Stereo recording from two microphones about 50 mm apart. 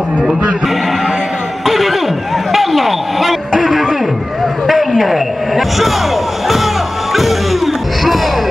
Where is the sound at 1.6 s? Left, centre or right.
Centre.